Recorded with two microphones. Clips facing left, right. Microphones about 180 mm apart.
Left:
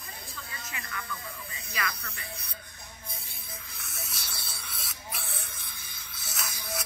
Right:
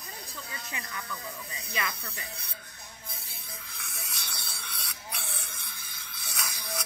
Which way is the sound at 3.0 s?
Centre (ahead or behind).